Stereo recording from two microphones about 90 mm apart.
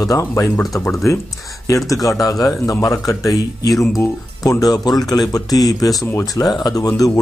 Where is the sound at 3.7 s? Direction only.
Centre (ahead or behind).